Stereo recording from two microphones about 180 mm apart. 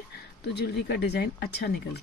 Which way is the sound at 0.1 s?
65° left (ahead or behind).